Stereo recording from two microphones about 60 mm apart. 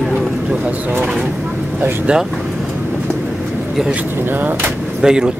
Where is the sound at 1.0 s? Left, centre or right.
Centre.